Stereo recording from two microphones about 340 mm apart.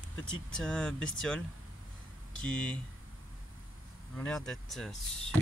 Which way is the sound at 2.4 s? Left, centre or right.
Centre.